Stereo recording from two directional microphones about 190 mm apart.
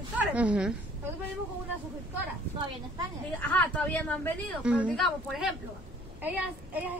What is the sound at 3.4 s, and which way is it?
Speech, 10° left (ahead or behind).